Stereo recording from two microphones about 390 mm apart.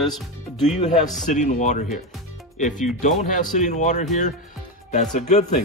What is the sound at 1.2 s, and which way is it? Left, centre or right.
Speech, centre.